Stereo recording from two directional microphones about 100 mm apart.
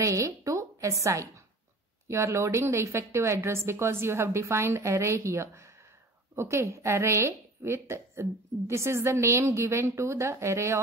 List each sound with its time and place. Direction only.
0.0 s a woman's voice: 30° right (ahead or behind)